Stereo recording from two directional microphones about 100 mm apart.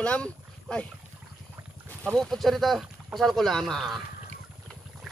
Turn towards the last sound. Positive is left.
turn(degrees=0)  # may be behind; listen again after turning